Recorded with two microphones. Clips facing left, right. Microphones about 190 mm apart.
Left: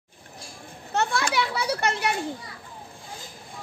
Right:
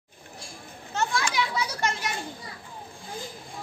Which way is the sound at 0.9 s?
65° left (ahead or behind).